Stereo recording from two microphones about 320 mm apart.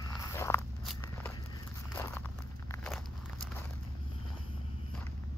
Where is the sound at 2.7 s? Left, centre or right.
Centre.